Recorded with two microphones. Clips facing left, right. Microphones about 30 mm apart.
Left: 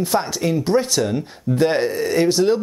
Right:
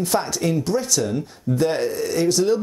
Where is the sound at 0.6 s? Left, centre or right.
Left.